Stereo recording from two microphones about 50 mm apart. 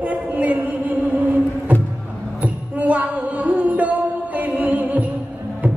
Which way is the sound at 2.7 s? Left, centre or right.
Right.